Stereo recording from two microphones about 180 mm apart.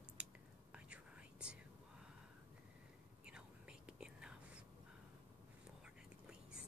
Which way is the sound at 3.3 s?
5° right (ahead or behind).